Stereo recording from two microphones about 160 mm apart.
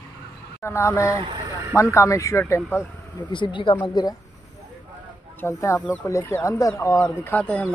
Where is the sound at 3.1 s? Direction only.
30° left (ahead or behind).